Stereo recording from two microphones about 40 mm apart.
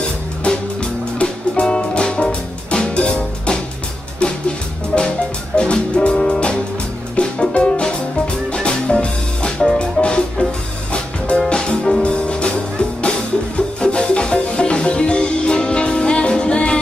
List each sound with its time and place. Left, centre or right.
0.5 s music: left
13.6 s music: left